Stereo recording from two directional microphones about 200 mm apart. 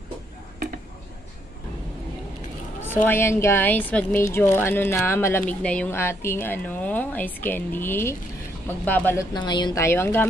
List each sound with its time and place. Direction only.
2.8 s a woman's voice: 10° left (ahead or behind)
9.3 s a woman's voice: 20° left (ahead or behind)